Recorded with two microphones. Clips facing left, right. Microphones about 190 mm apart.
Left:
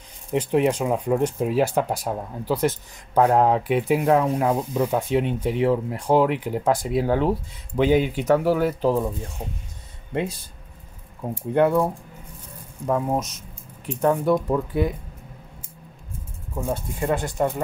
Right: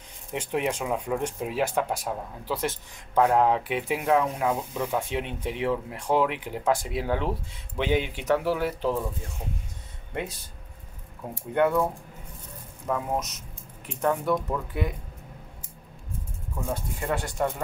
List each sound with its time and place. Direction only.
0.3 s speech: 35° left (ahead or behind)
9.4 s speech: 30° left (ahead or behind)
11.5 s speech: 30° left (ahead or behind)
16.6 s speech: 20° left (ahead or behind)